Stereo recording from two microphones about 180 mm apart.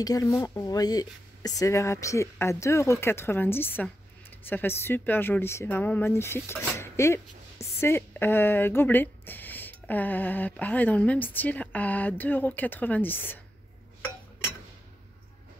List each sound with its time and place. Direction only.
0.0 s speech: 20° left (ahead or behind)